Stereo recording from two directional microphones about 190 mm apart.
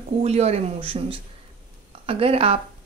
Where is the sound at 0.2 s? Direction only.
35° right (ahead or behind).